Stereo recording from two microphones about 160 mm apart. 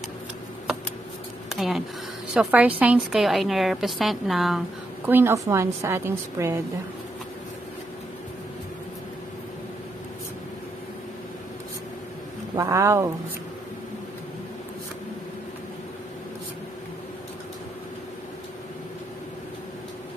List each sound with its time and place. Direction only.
1.5 s a sound: centre (ahead or behind)
2.3 s a woman's voice: 10° right (ahead or behind)
5.0 s a woman's voice: 15° right (ahead or behind)
12.5 s speech: 20° right (ahead or behind)